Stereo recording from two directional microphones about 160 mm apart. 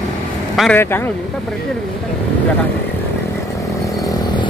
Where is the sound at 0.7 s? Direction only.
15° left (ahead or behind).